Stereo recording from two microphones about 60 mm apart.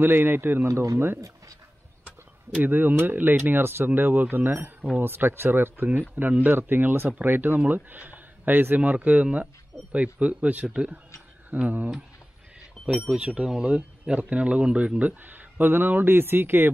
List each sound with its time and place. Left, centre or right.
0.0 s speech: right
0.7 s speech: right
0.9 s speech: right
2.6 s speech: right
12.8 s a sound: centre
13.2 s speech: centre; by 16.7 s right